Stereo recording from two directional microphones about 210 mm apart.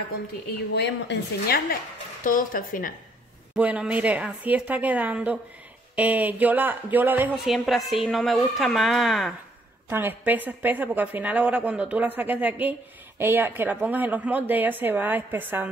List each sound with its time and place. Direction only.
0.7 s a woman's voice: 55° left (ahead or behind)
2.2 s speech: 40° left (ahead or behind)
3.5 s a woman's voice: 5° right (ahead or behind)
9.8 s a woman's voice: 10° right (ahead or behind)